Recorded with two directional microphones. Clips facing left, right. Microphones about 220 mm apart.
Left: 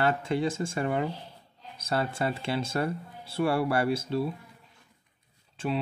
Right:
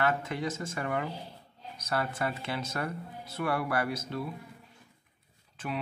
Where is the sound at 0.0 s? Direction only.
30° left (ahead or behind).